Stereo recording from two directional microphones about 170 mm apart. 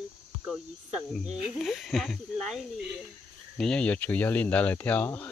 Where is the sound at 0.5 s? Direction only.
Centre (ahead or behind).